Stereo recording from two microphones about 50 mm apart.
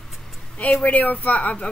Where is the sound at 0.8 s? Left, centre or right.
Left.